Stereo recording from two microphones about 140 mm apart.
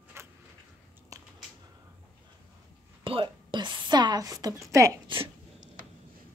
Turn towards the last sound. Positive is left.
turn(degrees=-35)  # may be behind; listen again after turning